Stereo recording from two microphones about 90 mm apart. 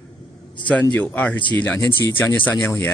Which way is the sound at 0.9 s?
15° left (ahead or behind).